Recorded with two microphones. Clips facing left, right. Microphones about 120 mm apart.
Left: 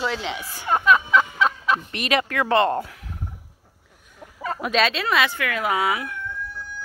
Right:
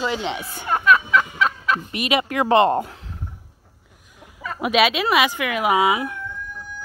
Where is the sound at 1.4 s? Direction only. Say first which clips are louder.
Even; 5° right (ahead or behind).